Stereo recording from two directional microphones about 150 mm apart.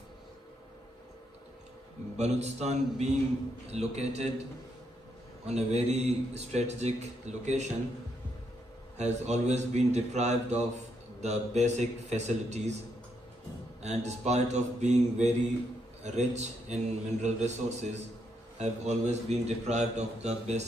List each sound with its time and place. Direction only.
2.1 s a man's voice: 50° right (ahead or behind)
5.5 s a man's voice: 45° right (ahead or behind)
8.9 s a man's voice: 50° right (ahead or behind)
13.8 s a man's voice: 50° right (ahead or behind)